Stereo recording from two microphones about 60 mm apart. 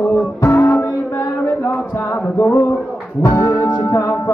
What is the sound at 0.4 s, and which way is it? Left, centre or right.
Music, left.